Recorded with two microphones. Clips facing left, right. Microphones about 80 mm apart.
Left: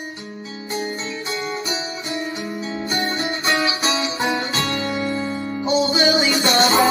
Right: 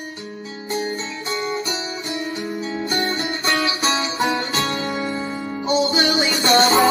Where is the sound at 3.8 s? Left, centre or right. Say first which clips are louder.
Even; right.